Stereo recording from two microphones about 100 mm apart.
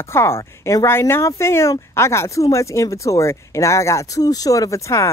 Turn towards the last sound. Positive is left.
turn(degrees=30)  # may be behind; listen again after turning